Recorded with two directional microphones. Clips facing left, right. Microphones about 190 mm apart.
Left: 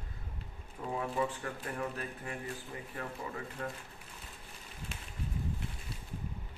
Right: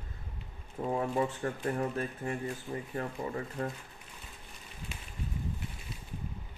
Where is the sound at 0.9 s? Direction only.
35° right (ahead or behind).